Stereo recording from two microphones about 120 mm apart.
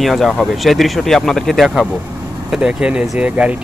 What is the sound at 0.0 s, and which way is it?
Speech, centre (ahead or behind).